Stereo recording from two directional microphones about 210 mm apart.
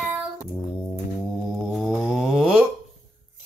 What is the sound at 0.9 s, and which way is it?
Music, centre (ahead or behind).